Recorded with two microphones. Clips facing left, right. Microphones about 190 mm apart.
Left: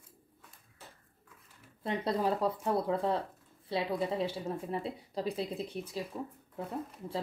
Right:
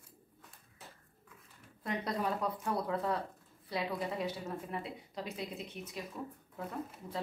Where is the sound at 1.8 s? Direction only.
30° left (ahead or behind).